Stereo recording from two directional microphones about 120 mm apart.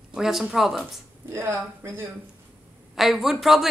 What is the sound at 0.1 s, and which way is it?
Speech, 5° right (ahead or behind).